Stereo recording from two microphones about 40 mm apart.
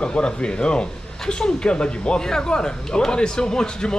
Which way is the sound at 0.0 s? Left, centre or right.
Left.